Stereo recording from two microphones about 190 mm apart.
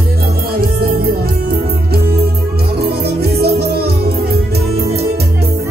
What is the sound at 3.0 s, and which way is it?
Music, 55° right (ahead or behind).